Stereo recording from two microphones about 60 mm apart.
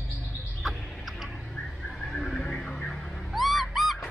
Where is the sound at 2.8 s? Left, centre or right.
Centre.